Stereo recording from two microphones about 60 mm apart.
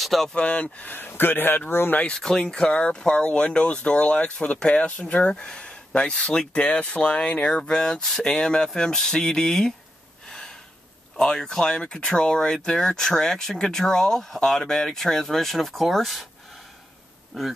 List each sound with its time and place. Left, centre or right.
0.0 s speech: centre
0.3 s speech: centre; by 2.0 s left
2.0 s speech: centre
10.2 s gasp: centre
11.1 s speech: centre
17.3 s speech: centre